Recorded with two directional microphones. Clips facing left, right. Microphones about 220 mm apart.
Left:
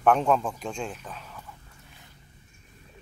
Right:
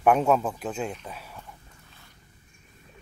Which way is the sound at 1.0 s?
10° right (ahead or behind).